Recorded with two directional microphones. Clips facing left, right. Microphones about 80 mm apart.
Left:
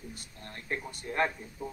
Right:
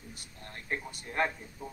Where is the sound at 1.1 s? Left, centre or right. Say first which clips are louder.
Left 1 dB; centre.